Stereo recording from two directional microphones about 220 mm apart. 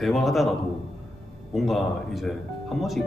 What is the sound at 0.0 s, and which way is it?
Speech, centre (ahead or behind).